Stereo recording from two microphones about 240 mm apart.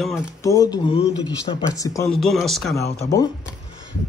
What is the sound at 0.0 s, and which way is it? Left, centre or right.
Speech, centre.